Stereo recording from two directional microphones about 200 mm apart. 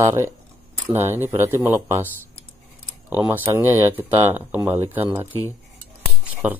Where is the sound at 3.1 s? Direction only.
10° right (ahead or behind).